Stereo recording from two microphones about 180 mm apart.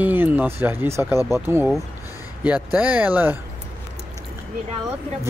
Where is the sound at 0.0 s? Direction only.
10° right (ahead or behind).